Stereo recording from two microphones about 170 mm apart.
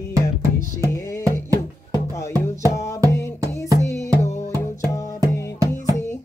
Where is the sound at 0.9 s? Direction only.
20° left (ahead or behind).